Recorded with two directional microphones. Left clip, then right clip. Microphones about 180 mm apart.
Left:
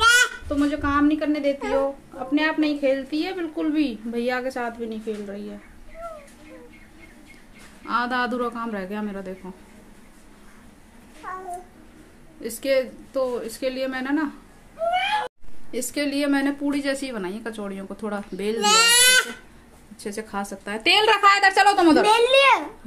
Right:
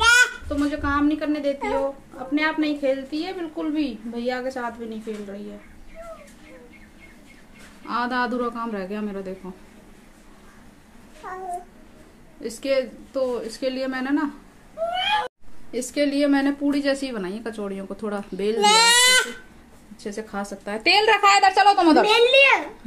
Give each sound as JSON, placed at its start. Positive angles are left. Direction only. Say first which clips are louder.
{"t": 0.0, "sound": "a sound", "louder": "right 1 dB", "side_deg": 0}
{"t": 0.5, "sound": "speech", "louder": "left 1 dB", "side_deg": 10}
{"t": 7.8, "sound": "a woman's voice", "louder": "left 1 dB", "side_deg": 0}
{"t": 11.2, "sound": "babbling", "louder": "left 1 dB", "side_deg": -15}
{"t": 12.4, "sound": "a woman's voice", "louder": "left 1 dB", "side_deg": 0}
{"t": 15.7, "sound": "a woman's voice", "louder": "right 3 dB", "side_deg": -5}
{"t": 18.6, "sound": "speech", "louder": "right 1 dB", "side_deg": -35}
{"t": 20.0, "sound": "a woman's voice", "louder": "left 1 dB", "side_deg": 5}